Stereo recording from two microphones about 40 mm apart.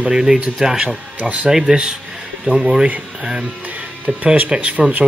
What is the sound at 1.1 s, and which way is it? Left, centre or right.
Speech, right.